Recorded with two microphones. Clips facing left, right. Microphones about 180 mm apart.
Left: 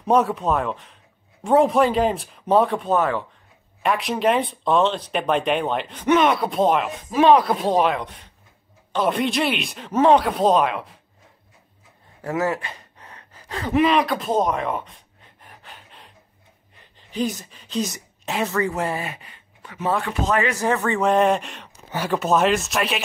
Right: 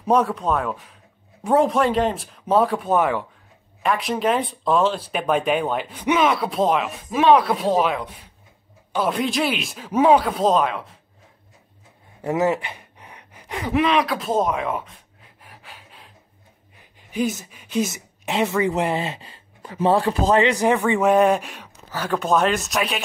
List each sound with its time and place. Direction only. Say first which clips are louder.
0.0 s speech: even; centre (ahead or behind)
3.8 s speech: left 1 dB; centre (ahead or behind)
12.2 s gasp: right 3 dB; 20° right (ahead or behind)
13.7 s speech: left 1 dB; centre (ahead or behind)
15.4 s filing: even; 5° right (ahead or behind)
17.1 s a woman's voice: right 1 dB; 10° right (ahead or behind); by 20.4 s 30° right (ahead or behind)
20.4 s speech: right 3 dB; 15° right (ahead or behind); by 23.0 s centre (ahead or behind)